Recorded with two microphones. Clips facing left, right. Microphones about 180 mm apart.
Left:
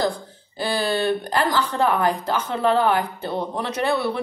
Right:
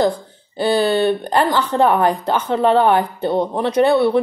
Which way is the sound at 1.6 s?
30° right (ahead or behind).